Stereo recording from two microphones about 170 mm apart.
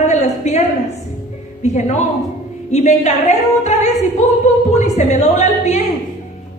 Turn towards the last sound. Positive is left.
turn(degrees=40)  # may be behind; listen again after turning